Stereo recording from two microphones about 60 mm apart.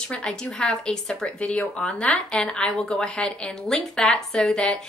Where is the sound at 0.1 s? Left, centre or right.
Centre.